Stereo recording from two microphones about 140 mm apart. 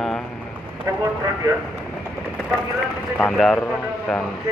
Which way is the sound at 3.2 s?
5° left (ahead or behind).